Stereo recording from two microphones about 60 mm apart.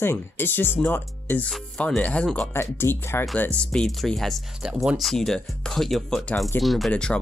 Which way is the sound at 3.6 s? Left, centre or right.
Centre.